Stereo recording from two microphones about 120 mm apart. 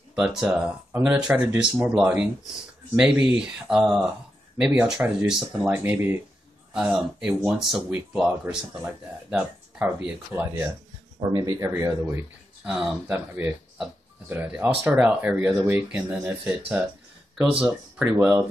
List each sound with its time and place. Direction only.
0.1 s speech: 5° right (ahead or behind)
5.7 s speech: 20° right (ahead or behind)
6.7 s speech: 5° right (ahead or behind)
11.1 s speech: 30° right (ahead or behind)
12.6 s speech: centre (ahead or behind)
13.1 s speech: 15° right (ahead or behind)
18.0 s speech: 20° right (ahead or behind)